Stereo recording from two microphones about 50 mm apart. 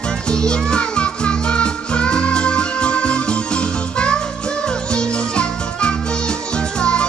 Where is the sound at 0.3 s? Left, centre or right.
Centre.